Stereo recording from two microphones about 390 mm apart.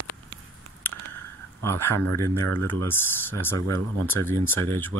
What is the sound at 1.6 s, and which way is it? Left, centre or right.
Speech, centre.